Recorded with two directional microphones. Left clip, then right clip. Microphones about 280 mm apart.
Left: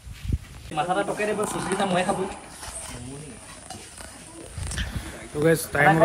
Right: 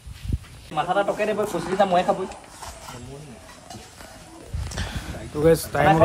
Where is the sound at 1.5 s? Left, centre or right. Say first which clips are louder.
Right 5 dB; right.